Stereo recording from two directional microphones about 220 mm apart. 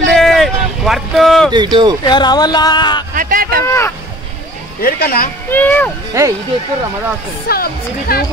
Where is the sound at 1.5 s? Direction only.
20° right (ahead or behind).